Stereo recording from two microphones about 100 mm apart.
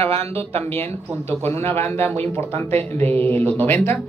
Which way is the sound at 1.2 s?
20° left (ahead or behind).